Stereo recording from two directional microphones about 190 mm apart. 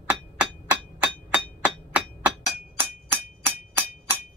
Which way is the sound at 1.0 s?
10° right (ahead or behind).